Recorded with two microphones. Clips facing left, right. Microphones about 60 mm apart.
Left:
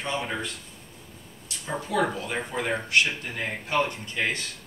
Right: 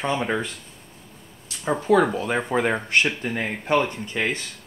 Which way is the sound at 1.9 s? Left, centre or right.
Right.